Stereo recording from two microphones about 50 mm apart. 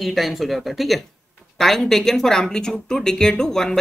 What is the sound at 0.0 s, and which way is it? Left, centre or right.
A woman's voice, centre.